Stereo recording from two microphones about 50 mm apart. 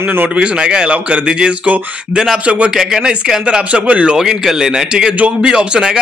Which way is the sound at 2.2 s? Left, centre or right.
Centre.